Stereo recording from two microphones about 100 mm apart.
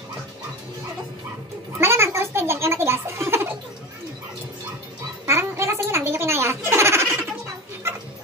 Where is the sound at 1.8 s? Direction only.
25° right (ahead or behind).